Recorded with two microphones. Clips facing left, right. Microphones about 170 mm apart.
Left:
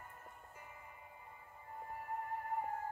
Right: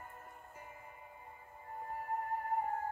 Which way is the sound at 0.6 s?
35° right (ahead or behind).